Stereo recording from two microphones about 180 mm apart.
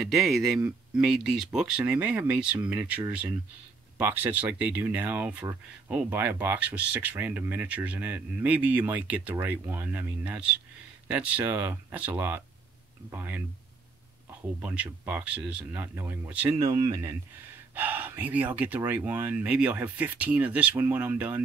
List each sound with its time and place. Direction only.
0.0 s speech: centre (ahead or behind)
14.6 s speech: 5° right (ahead or behind)